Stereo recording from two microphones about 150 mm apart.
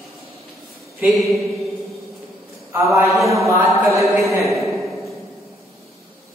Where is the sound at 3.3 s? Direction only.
20° right (ahead or behind).